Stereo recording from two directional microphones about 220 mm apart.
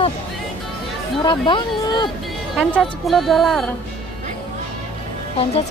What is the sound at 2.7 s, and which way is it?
Music, centre (ahead or behind).